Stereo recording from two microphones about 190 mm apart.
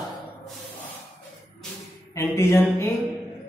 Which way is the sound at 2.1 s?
15° left (ahead or behind).